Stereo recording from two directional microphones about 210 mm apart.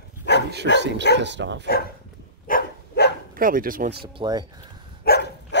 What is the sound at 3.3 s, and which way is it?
Speech, 40° right (ahead or behind).